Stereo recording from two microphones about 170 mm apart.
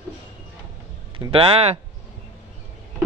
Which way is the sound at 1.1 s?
30° right (ahead or behind).